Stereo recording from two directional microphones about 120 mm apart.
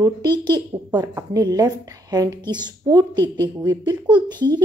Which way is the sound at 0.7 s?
20° right (ahead or behind).